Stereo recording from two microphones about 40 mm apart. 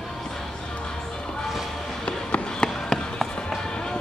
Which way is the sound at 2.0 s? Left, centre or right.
Left.